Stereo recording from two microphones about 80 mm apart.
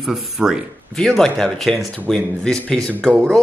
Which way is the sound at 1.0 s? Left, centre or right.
Centre.